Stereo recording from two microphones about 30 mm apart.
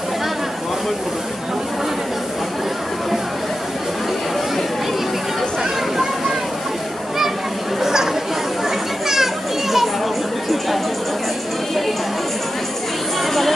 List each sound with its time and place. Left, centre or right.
7.8 s chatter: centre
8.6 s children playing: centre